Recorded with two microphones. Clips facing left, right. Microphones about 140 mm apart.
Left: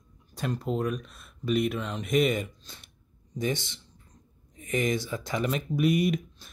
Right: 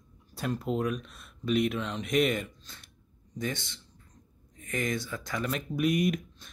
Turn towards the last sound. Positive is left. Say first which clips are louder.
# left 1 dB
turn(degrees=0)  # may be behind; listen again after turning